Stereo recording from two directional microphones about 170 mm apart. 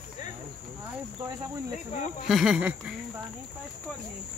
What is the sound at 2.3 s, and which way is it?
Speech, 5° right (ahead or behind).